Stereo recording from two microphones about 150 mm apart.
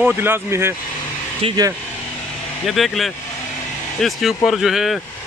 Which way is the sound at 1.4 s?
40° right (ahead or behind).